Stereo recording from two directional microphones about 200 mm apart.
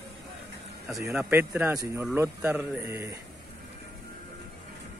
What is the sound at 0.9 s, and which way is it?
Speech, centre (ahead or behind).